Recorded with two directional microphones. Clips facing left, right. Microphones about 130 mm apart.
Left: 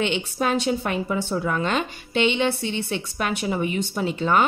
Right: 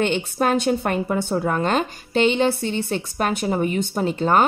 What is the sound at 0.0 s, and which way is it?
A woman's voice, 45° right (ahead or behind).